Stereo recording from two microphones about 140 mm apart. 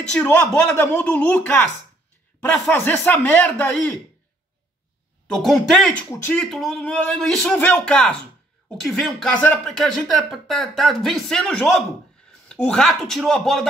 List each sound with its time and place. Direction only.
0.1 s speech: 5° left (ahead or behind)
5.3 s speech: centre (ahead or behind)
6.4 s speech: centre (ahead or behind)